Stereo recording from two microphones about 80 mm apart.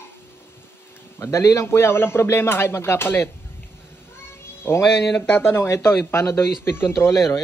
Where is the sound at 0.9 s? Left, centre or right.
Left.